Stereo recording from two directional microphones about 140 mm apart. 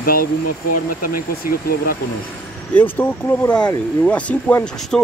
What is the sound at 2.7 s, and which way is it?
Speech, 10° left (ahead or behind).